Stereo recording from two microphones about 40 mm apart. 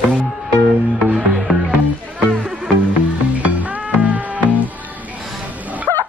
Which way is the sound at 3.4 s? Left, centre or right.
Right.